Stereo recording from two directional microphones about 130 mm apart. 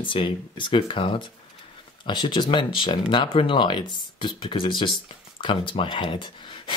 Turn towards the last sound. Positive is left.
turn(degrees=40)  # may be behind; listen again after turning